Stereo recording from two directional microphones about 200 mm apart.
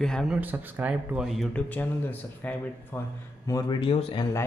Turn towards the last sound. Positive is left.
turn(degrees=20)  # may be behind; listen again after turning